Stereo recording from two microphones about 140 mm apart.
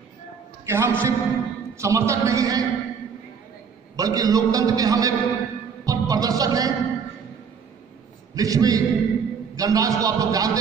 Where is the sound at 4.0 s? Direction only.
25° right (ahead or behind).